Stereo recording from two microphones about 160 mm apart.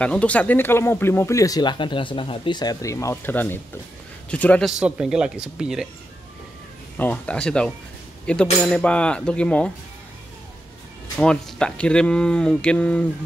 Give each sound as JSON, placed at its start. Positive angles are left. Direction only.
{"t": 0.0, "sound": "speech", "side_deg": 10}
{"t": 7.0, "sound": "speech", "side_deg": 10}
{"t": 8.3, "sound": "cutlery", "side_deg": 5}
{"t": 11.1, "sound": "speech", "side_deg": 5}